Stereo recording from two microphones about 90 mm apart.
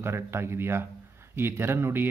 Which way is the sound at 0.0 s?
30° right (ahead or behind).